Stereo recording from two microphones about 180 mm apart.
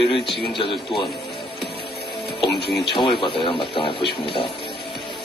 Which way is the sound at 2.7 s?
65° left (ahead or behind).